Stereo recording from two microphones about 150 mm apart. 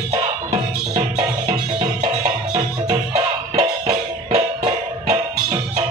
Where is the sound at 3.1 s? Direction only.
45° right (ahead or behind).